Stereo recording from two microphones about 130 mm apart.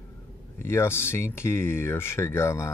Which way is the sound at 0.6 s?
20° left (ahead or behind).